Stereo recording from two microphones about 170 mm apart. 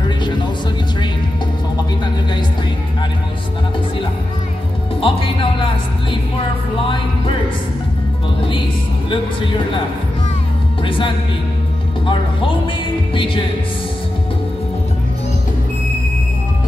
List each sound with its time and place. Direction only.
5.0 s speech: 30° left (ahead or behind)
10.8 s a woman's voice: 30° left (ahead or behind)
13.1 s speech: 30° left (ahead or behind)